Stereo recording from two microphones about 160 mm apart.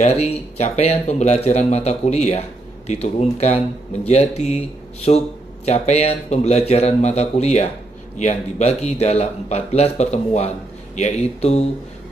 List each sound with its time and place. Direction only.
0.0 s speech: 40° left (ahead or behind)